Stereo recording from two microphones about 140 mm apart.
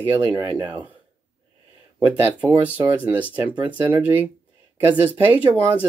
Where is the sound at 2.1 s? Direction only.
10° right (ahead or behind).